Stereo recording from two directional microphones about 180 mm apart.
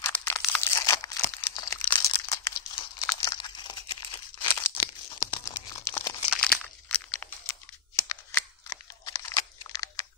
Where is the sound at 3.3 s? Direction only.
25° left (ahead or behind).